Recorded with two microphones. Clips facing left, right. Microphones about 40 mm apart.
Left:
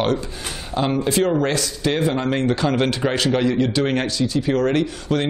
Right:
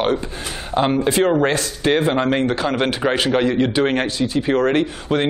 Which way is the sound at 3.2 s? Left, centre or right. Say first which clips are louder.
Right 1 dB; right.